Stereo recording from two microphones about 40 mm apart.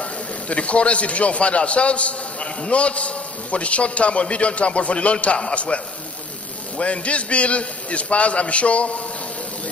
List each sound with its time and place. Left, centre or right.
0.0 s a man's voice: left
6.8 s a man's voice: left